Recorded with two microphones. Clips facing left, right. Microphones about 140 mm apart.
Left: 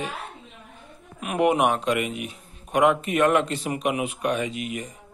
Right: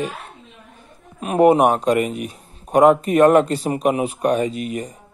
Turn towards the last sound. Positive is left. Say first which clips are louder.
# right 5 dB
turn(degrees=-35)  # may be behind; listen again after turning